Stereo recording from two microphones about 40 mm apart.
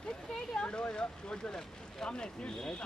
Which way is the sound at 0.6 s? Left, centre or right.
Left.